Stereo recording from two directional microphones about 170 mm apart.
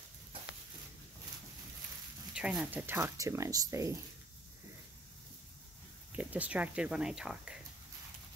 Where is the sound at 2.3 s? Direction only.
5° right (ahead or behind).